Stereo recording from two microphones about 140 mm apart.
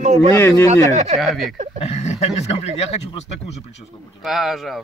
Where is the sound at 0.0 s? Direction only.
55° right (ahead or behind).